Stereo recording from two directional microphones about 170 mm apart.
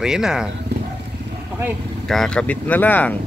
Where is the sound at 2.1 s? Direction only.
5° left (ahead or behind).